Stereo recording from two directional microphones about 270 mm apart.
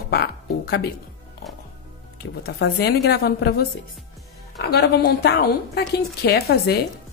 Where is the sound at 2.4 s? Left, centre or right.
Left.